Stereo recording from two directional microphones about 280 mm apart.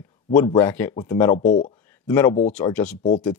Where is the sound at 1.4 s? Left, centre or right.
Left.